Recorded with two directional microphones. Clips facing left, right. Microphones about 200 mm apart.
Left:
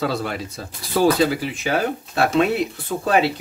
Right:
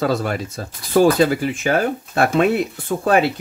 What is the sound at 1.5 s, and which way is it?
Speech, 50° right (ahead or behind).